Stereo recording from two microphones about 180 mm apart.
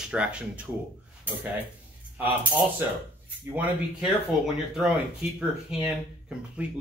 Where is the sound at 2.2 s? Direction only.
10° right (ahead or behind).